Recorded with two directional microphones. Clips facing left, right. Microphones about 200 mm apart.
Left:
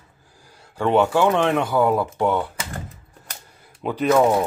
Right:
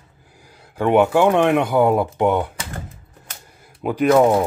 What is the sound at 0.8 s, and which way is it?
Speech, 15° right (ahead or behind).